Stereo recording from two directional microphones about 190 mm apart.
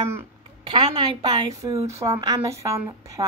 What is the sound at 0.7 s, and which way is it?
A woman's voice, 25° right (ahead or behind).